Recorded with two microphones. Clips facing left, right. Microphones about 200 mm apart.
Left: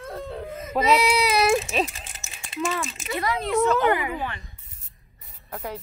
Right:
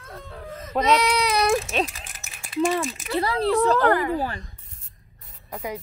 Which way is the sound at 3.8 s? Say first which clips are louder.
Right 2 dB; 10° left (ahead or behind).